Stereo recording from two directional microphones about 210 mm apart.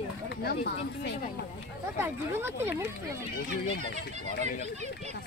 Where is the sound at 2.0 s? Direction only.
10° right (ahead or behind).